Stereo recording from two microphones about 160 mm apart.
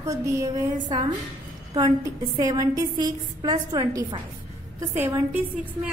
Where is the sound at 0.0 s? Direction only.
20° right (ahead or behind).